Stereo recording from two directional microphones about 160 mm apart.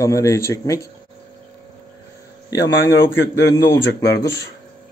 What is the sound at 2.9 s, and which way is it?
Speech, 90° left.